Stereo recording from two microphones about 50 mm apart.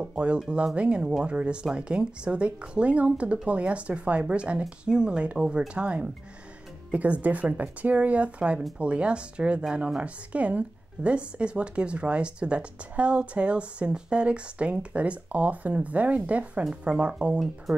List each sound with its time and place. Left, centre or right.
0.0 s speech: right
17.7 s speech: centre